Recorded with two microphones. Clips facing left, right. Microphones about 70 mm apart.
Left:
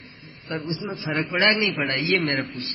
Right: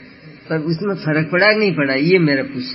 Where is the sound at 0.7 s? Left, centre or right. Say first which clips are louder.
Right 10 dB; right.